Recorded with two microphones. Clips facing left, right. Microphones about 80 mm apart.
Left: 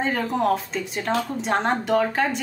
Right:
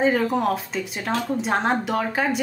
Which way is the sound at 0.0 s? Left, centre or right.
Centre.